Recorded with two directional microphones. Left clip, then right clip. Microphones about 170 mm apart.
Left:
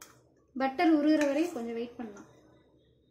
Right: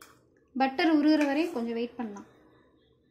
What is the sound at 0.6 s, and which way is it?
Speech, centre (ahead or behind).